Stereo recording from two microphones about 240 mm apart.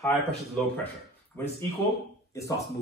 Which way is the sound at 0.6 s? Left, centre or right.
Centre.